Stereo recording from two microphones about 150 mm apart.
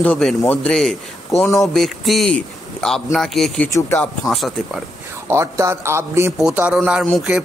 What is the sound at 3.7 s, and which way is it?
Speech, 20° left (ahead or behind).